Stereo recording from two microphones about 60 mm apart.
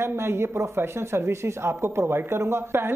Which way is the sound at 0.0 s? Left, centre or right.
Right.